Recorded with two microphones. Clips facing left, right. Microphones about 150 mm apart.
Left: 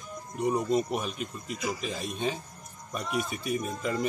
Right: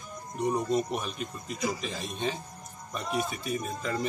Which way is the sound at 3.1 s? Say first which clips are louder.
Even; 35° right (ahead or behind).